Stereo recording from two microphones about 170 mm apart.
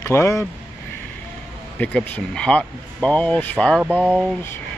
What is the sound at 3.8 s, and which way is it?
Speech, 5° right (ahead or behind).